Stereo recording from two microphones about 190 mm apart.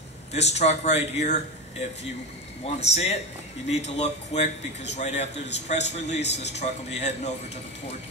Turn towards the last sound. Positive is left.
turn(degrees=35)  # may be behind; listen again after turning